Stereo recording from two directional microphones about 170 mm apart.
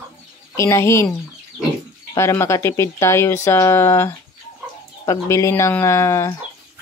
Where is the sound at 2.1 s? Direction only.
15° left (ahead or behind).